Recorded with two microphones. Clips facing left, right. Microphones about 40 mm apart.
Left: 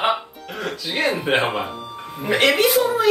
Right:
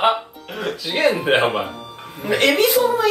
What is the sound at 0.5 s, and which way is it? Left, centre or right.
Speech, centre.